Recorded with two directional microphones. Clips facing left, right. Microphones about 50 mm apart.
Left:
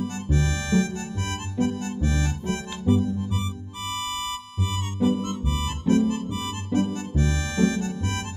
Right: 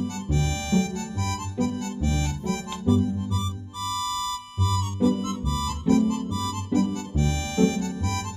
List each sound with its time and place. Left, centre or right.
0.3 s music: left